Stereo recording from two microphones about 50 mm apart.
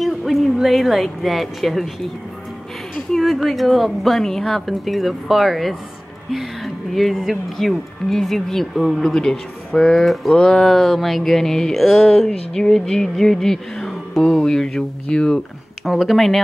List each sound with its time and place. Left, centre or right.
0.0 s a woman's voice: centre
3.1 s speech: centre
10.3 s speech: centre
10.6 s speech: centre
15.8 s speech: centre